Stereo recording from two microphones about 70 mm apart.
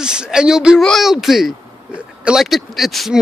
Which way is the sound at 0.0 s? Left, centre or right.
Centre.